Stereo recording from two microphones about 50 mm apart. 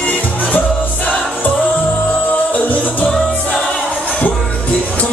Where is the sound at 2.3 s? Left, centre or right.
Left.